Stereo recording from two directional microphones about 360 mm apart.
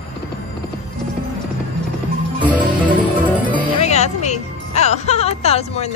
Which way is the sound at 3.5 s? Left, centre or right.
Centre.